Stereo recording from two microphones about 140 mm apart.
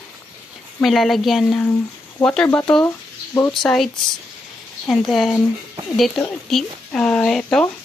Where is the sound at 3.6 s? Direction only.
5° left (ahead or behind).